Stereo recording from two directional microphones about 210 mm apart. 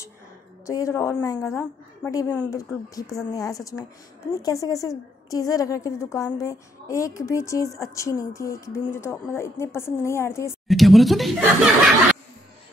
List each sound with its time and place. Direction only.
0.7 s a woman's voice: 15° left (ahead or behind)
10.7 s speech: centre (ahead or behind)